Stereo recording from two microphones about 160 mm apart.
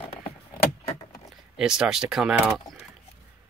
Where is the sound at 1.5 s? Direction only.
5° right (ahead or behind).